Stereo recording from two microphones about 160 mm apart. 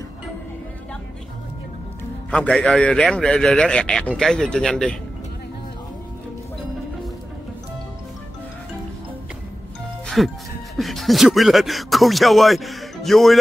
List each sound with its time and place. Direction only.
2.3 s speech: 5° left (ahead or behind)
10.0 s music: centre (ahead or behind)
10.8 s speech: centre (ahead or behind)